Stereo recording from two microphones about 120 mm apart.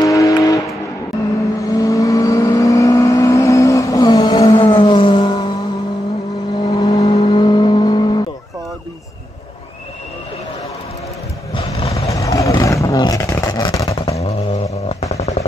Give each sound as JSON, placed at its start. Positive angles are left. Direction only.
{"t": 0.0, "sound": "vehicle", "side_deg": 25}
{"t": 6.6, "sound": "vehicle", "side_deg": 35}
{"t": 11.5, "sound": "vehicle", "side_deg": 50}
{"t": 11.9, "sound": "vehicle", "side_deg": 25}
{"t": 13.0, "sound": "a sound", "side_deg": 30}
{"t": 14.2, "sound": "a sound", "side_deg": 65}